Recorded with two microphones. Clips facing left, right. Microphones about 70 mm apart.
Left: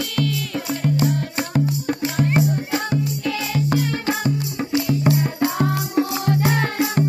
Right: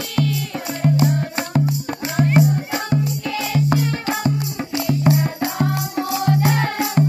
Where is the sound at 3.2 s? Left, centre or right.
Centre.